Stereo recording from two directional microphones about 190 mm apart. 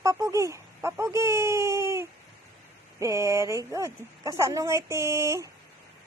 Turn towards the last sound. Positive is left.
turn(degrees=-15)  # may be behind; listen again after turning